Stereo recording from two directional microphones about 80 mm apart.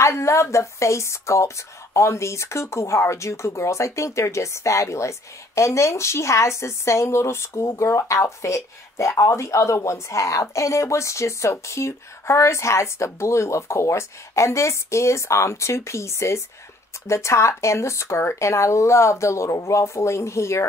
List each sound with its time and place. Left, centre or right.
0.0 s speech: left